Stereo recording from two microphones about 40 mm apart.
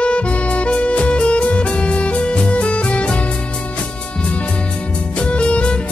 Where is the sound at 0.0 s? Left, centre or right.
Left.